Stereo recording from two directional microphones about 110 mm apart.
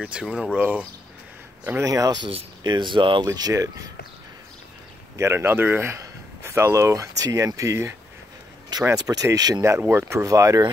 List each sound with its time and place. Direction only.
0.0 s speech: 10° right (ahead or behind)
1.9 s speech: 30° right (ahead or behind)
2.2 s speech: 45° right (ahead or behind)
3.3 s speech: 35° right (ahead or behind)
5.1 s speech: 25° right (ahead or behind)
8.7 s a sound: 35° right (ahead or behind)
9.0 s speech: 35° right (ahead or behind)